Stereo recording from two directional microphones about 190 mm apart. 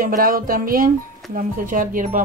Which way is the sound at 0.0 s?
50° right (ahead or behind).